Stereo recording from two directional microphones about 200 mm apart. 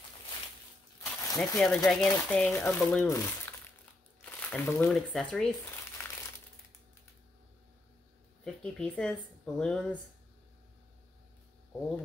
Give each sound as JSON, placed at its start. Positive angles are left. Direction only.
{"t": 1.0, "sound": "a sound", "side_deg": 15}
{"t": 1.6, "sound": "speech", "side_deg": 0}
{"t": 6.0, "sound": "crumpling", "side_deg": 15}
{"t": 8.5, "sound": "speech", "side_deg": 5}